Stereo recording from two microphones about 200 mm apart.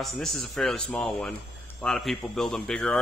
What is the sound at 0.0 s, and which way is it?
A man's voice, centre (ahead or behind).